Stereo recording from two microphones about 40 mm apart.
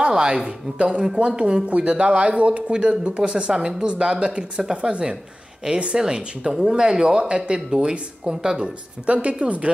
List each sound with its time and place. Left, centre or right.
0.0 s speech: right
9.0 s speech: right